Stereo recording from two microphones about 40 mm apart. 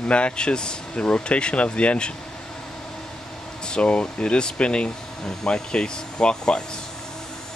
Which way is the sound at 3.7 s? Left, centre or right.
Left.